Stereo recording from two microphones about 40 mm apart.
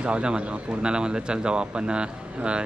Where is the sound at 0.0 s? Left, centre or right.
Right.